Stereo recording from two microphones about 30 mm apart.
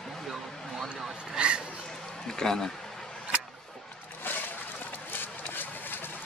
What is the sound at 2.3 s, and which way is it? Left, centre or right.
Speech, centre.